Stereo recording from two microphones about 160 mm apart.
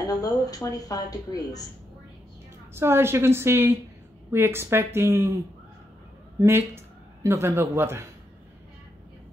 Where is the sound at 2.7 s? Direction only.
15° right (ahead or behind).